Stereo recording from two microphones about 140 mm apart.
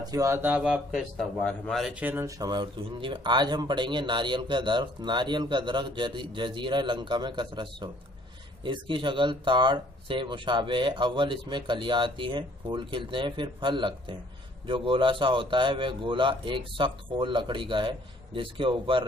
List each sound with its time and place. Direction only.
0.0 s speech: 25° right (ahead or behind); by 2.0 s centre (ahead or behind)
2.0 s speech: 20° right (ahead or behind); by 19.0 s 35° right (ahead or behind)